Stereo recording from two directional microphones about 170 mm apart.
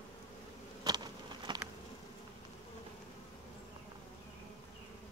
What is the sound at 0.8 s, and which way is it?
Insect, 25° right (ahead or behind).